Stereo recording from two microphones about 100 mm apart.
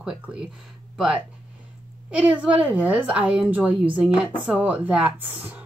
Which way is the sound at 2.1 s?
10° right (ahead or behind).